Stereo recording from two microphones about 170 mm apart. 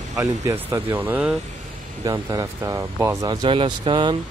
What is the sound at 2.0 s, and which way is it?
Speech, 20° right (ahead or behind).